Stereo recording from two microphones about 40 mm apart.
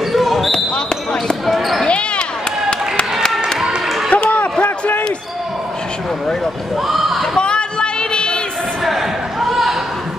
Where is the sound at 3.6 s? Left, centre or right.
Centre.